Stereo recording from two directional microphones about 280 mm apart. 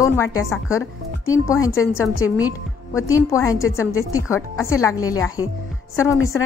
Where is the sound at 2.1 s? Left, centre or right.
Left.